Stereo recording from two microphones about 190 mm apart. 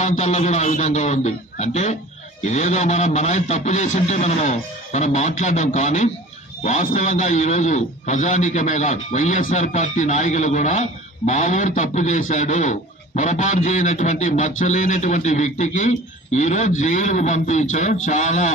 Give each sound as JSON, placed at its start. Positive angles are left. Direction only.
{"t": 0.0, "sound": "a man's voice", "side_deg": 40}